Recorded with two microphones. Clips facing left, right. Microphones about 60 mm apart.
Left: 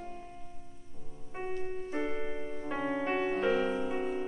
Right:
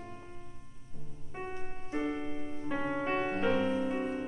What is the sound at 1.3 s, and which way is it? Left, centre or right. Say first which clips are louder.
Music: left 4 dB; centre.